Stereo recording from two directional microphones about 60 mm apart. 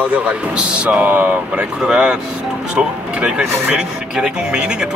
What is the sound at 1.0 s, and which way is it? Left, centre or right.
Speech, right.